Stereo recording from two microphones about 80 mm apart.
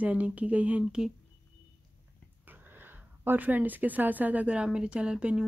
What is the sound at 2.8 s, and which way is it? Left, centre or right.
Speech, right.